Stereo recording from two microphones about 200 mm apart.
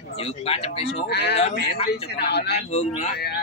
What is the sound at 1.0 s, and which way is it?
Speech, 55° left (ahead or behind).